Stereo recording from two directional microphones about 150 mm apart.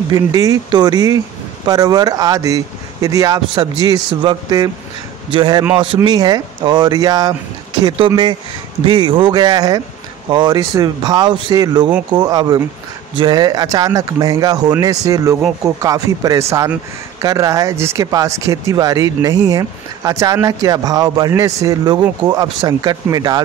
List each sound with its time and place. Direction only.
0.1 s speech: 25° right (ahead or behind)